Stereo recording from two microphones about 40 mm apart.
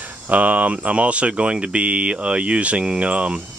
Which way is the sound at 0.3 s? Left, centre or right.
Right.